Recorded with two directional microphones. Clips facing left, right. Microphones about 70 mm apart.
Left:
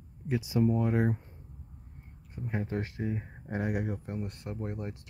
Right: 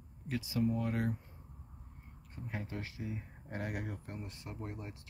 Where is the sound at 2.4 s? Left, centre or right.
Left.